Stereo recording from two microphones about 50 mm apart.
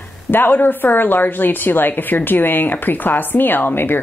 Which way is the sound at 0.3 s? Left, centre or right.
Left.